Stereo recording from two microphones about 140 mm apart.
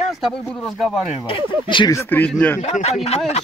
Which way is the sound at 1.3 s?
35° left (ahead or behind).